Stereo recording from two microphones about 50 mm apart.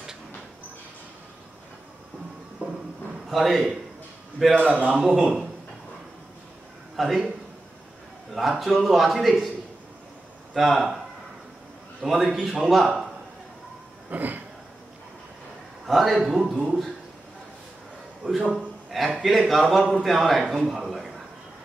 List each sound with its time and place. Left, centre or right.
3.3 s a man's voice: centre
4.6 s a man's voice: right
4.8 s a man's voice: centre
7.0 s a man's voice: centre
8.4 s a man's voice: centre
10.5 s a man's voice: centre
12.0 s a man's voice: centre
14.1 s a sound: right
15.9 s a man's voice: centre
18.2 s a man's voice: centre